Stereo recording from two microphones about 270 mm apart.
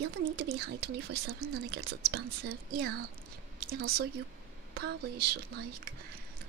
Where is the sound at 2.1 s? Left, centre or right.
Right.